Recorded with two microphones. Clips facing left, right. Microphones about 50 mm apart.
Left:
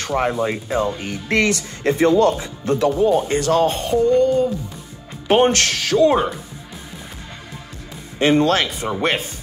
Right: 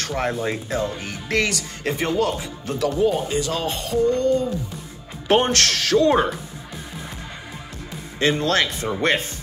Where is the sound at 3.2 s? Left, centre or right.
Left.